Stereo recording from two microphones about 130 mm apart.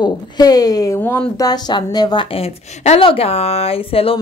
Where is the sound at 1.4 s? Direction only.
30° left (ahead or behind).